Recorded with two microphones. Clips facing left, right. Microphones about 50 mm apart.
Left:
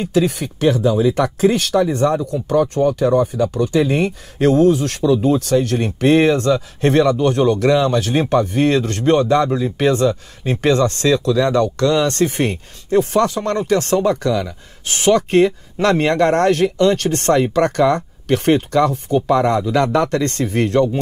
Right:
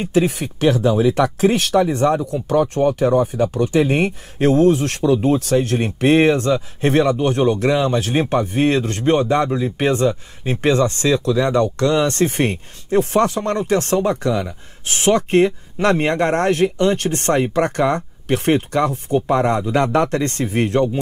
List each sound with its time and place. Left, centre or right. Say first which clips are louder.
0.0 s speech: even; right
2.3 s speech: left 1 dB; right
15.0 s speech: left 2 dB; right
15.3 s speech: left 1 dB; right